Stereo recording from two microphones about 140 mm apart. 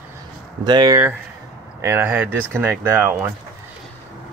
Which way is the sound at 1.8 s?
15° right (ahead or behind).